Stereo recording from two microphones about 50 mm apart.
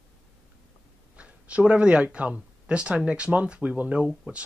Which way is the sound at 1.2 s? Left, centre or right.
Right.